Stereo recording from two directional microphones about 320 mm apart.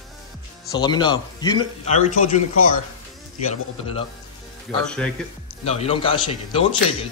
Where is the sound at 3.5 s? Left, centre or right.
Centre.